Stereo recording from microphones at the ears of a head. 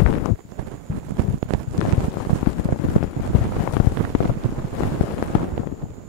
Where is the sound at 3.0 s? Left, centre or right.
Left.